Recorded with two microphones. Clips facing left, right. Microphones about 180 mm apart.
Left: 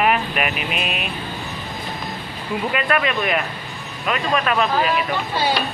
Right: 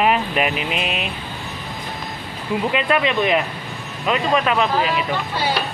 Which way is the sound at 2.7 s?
20° right (ahead or behind).